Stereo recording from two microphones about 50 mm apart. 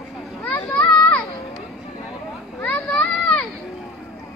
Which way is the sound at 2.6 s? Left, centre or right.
Left.